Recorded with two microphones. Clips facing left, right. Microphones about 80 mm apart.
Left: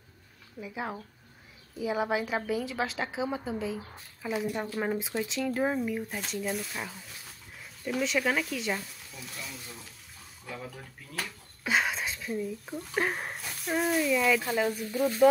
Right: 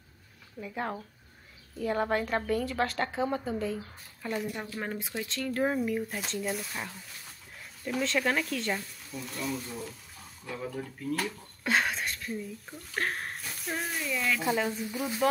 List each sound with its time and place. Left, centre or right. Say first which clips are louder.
0.6 s a woman's voice: right 1 dB; centre
14.9 s speech: left 6 dB; centre